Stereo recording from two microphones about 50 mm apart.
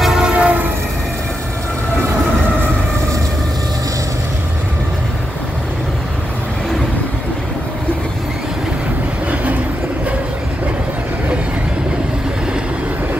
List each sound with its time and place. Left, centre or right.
0.2 s train: centre
9.3 s train: right